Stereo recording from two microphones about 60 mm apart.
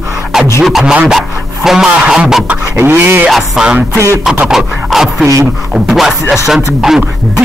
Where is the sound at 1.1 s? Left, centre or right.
Centre.